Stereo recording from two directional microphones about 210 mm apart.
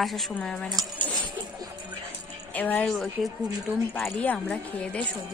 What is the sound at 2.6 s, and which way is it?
A woman's voice, 10° left (ahead or behind).